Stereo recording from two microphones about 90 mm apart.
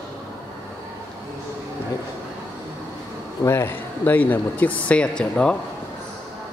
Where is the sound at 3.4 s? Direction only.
30° left (ahead or behind); by 5.5 s 10° left (ahead or behind).